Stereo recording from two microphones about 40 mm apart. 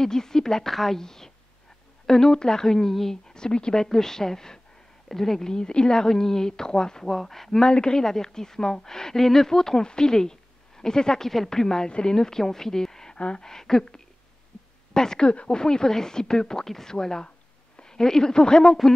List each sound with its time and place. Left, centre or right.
0.0 s speech: centre
3.3 s speech: centre
7.1 s speech: centre
7.6 s a woman's voice: centre